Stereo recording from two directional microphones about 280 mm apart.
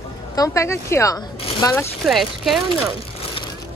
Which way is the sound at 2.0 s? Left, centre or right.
Centre.